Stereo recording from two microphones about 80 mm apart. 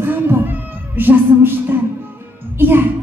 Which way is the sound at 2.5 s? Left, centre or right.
Right.